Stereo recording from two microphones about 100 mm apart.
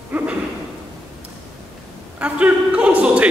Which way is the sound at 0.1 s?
15° right (ahead or behind).